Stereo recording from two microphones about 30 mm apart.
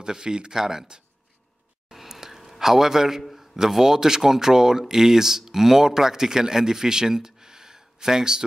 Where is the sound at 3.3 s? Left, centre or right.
Centre.